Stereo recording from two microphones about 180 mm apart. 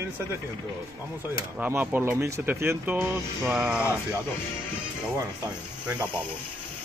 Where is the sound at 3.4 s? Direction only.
5° right (ahead or behind).